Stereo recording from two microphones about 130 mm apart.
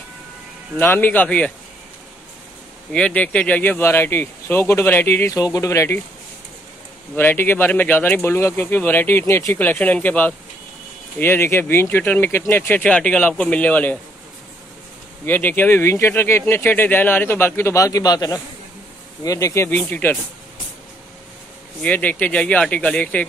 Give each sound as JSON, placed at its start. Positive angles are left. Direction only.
{"t": 0.7, "sound": "speech", "side_deg": 15}
{"t": 2.9, "sound": "speech", "side_deg": 10}
{"t": 7.2, "sound": "speech", "side_deg": 15}
{"t": 15.2, "sound": "speech", "side_deg": 15}
{"t": 21.8, "sound": "speech", "side_deg": 10}